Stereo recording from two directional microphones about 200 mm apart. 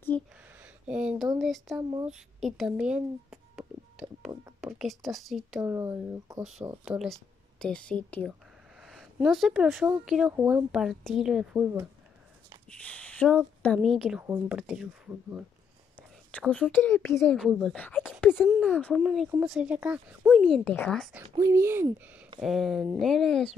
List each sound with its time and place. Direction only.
0.1 s a sound: 5° left (ahead or behind)
0.8 s speech: 5° right (ahead or behind)
1.8 s speech: 20° right (ahead or behind)
2.4 s a sound: centre (ahead or behind)
4.6 s a woman's voice: centre (ahead or behind)
5.6 s speech: 15° right (ahead or behind)
7.0 s speech: 5° left (ahead or behind)
12.8 s speech: 5° left (ahead or behind)
14.2 s speech: 15° right (ahead or behind)
14.6 s speech: 5° right (ahead or behind)
16.3 s speech: 5° left (ahead or behind)
21.1 s speech: 15° right (ahead or behind)
22.4 s speech: centre (ahead or behind)